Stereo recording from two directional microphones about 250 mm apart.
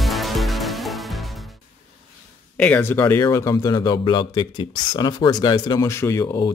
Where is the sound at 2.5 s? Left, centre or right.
Centre.